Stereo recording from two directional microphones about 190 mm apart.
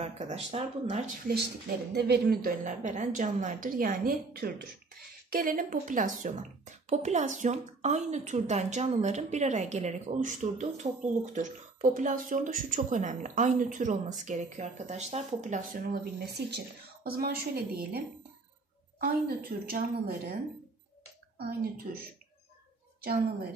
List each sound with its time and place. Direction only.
0.0 s a woman's voice: 35° right (ahead or behind); by 18.0 s 50° right (ahead or behind)
19.0 s speech: 50° right (ahead or behind)
21.4 s a woman's voice: 55° right (ahead or behind)